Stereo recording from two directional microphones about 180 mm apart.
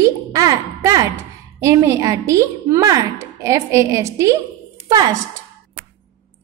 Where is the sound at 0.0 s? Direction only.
20° right (ahead or behind).